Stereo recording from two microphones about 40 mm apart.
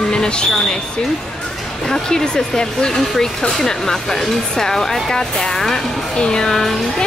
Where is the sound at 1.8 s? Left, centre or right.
Centre.